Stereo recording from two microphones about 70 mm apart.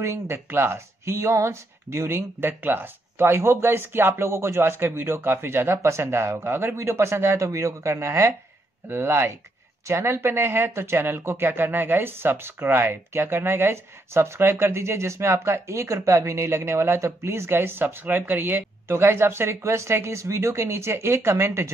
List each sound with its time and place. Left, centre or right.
0.0 s speech: right